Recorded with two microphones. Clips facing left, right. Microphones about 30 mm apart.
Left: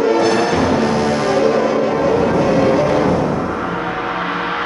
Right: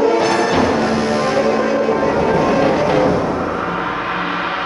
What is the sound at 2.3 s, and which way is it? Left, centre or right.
Music, centre.